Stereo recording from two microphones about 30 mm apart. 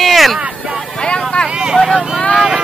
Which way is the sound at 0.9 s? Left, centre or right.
Left.